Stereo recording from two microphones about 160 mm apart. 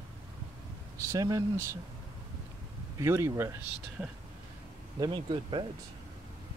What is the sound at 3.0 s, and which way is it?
Speech, 15° right (ahead or behind).